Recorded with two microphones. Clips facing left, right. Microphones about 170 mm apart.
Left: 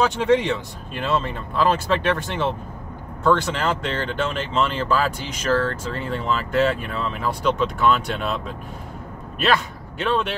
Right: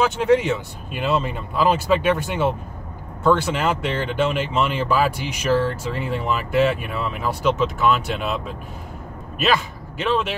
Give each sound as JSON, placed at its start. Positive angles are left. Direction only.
{"t": 0.0, "sound": "a man's voice", "side_deg": 0}